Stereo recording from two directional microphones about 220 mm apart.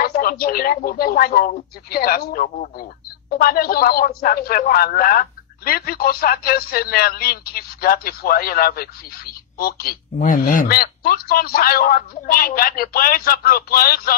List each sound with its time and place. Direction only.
0.0 s a woman's voice: 45° left (ahead or behind)